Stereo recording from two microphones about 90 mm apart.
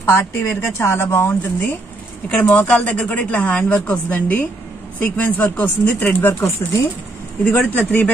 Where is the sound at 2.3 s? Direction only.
20° left (ahead or behind).